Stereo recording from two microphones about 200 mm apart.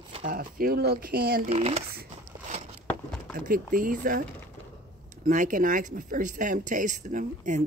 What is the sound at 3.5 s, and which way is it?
Speech, 45° right (ahead or behind).